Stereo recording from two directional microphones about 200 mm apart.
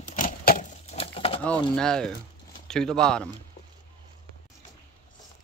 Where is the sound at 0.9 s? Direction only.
30° left (ahead or behind).